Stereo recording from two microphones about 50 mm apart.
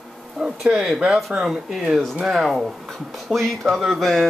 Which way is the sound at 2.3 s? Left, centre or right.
Centre.